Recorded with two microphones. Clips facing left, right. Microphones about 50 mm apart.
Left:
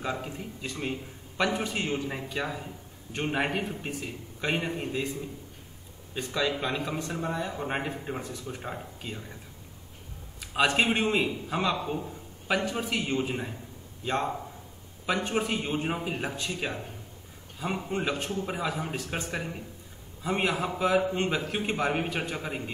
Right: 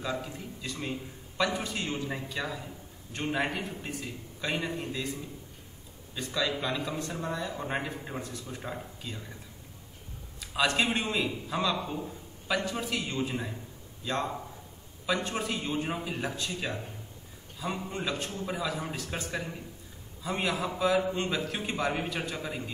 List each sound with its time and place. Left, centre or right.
0.2 s a man's voice: left
6.1 s a man's voice: left
7.0 s a man's voice: centre
10.4 s a man's voice: left